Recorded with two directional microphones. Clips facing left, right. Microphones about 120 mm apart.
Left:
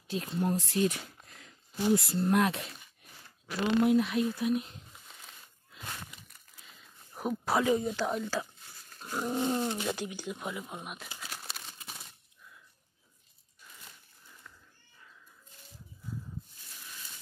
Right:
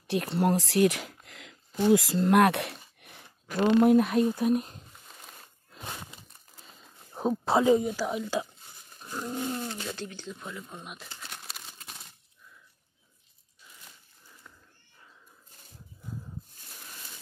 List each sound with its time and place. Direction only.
0.1 s speech: 75° right (ahead or behind)
3.0 s a sound: 65° right (ahead or behind)
3.4 s speech: 50° right (ahead or behind)
5.8 s crumpling: 25° right (ahead or behind)
7.8 s speech: 5° right (ahead or behind)
9.1 s speech: 10° left (ahead or behind)
9.4 s speech: 25° left (ahead or behind)
10.9 s crumpling: 5° left (ahead or behind)